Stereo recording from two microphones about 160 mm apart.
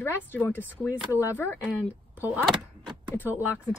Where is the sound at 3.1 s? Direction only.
10° left (ahead or behind).